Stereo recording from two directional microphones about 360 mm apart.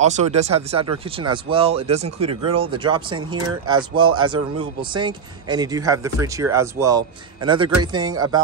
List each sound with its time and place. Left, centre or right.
0.0 s speech: centre